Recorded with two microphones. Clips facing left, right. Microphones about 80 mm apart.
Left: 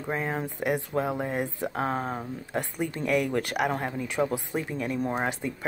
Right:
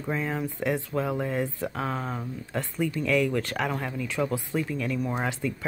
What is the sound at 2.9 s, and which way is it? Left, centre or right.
Speech, left.